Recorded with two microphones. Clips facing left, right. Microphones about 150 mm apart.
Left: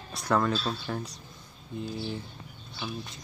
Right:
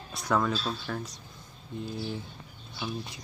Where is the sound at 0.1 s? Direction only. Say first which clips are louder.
Left 1 dB; centre (ahead or behind).